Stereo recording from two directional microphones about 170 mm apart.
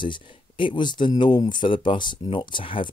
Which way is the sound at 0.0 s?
30° left (ahead or behind).